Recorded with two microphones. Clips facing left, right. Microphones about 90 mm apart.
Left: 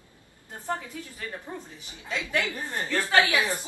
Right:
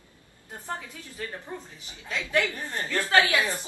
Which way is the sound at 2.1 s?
20° left (ahead or behind).